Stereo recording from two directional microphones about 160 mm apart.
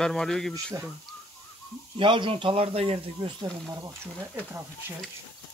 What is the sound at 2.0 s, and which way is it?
Speech, 30° right (ahead or behind).